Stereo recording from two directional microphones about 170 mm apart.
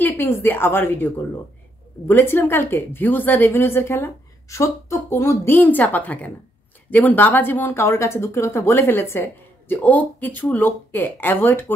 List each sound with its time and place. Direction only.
0.0 s speech: 15° left (ahead or behind)